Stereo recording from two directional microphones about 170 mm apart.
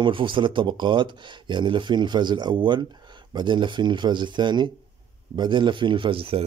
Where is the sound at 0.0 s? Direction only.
30° right (ahead or behind).